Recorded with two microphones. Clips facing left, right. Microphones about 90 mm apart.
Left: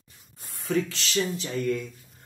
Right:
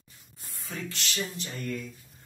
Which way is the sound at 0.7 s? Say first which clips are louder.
Left 13 dB; 90° left.